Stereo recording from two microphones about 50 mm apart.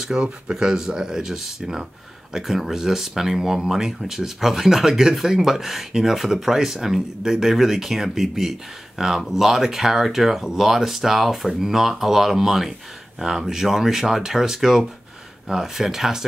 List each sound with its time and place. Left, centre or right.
0.0 s speech: centre